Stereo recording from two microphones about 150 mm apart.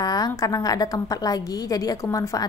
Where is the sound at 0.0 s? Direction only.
25° left (ahead or behind).